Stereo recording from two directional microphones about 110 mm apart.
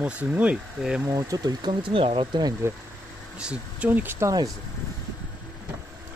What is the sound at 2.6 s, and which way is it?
Speech, 25° right (ahead or behind).